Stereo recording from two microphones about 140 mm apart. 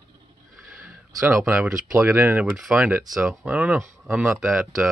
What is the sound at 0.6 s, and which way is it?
Speech, 5° right (ahead or behind).